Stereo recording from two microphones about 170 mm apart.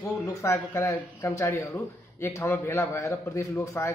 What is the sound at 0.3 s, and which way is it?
Speech, 15° left (ahead or behind).